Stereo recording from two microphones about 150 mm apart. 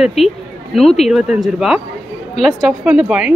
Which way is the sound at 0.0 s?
Centre (ahead or behind).